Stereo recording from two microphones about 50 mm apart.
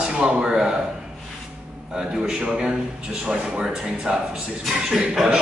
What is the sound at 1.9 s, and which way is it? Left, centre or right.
A man's voice, centre.